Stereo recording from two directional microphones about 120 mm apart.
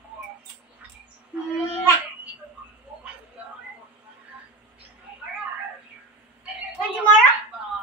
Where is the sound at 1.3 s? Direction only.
15° right (ahead or behind).